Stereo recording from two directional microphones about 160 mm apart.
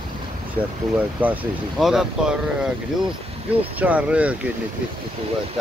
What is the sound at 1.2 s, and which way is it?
Speech, 10° right (ahead or behind).